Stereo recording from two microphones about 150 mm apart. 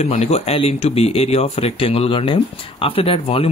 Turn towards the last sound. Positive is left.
turn(degrees=40)  # may be behind; listen again after turning